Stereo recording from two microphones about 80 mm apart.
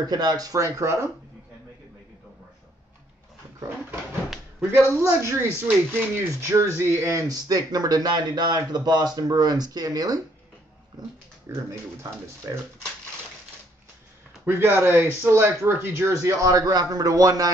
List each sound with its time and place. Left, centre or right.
0.0 s speech: right
4.6 s speech: right
11.4 s speech: right
14.4 s speech: right
16.1 s speech: right